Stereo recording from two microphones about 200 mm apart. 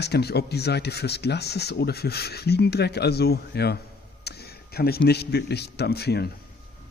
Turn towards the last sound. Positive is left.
turn(degrees=55)  # may be behind; listen again after turning